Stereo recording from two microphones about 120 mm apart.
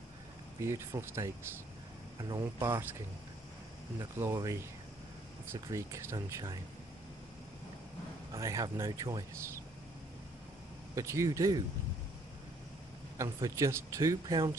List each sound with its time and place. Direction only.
0.6 s speech: 20° right (ahead or behind)
2.2 s speech: 35° right (ahead or behind)
4.0 s speech: 25° right (ahead or behind)
8.3 s speech: 25° right (ahead or behind)
11.0 s speech: 25° right (ahead or behind)
13.2 s speech: 25° right (ahead or behind)